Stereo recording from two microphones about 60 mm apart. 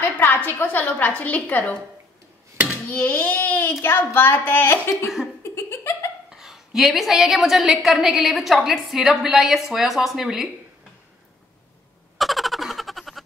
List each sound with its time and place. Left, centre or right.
0.0 s a woman's voice: left
2.9 s a sound: left
3.8 s a woman's voice: left
5.4 s laughter: left
6.3 s a woman's voice: centre
12.2 s a sound: centre